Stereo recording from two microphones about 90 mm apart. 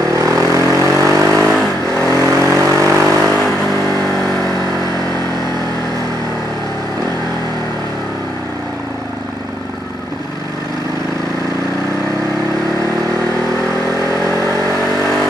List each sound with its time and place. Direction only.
0.1 s vehicle: 35° right (ahead or behind)